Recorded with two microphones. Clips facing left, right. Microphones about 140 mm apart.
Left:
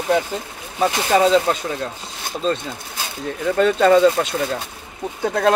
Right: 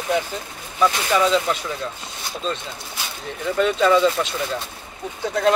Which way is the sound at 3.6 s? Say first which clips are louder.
Left 3 dB; 50° left (ahead or behind).